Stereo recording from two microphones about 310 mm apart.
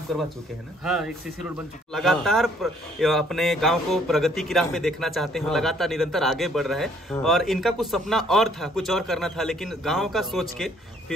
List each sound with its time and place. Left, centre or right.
0.8 s speech: centre